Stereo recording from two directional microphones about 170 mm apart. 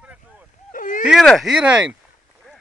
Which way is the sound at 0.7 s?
50° left (ahead or behind).